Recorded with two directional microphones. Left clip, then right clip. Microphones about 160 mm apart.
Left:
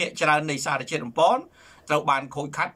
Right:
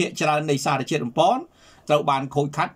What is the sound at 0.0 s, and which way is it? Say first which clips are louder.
Speech: even; 20° right (ahead or behind).